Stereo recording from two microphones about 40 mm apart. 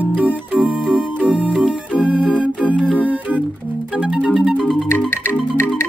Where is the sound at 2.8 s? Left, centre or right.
Right.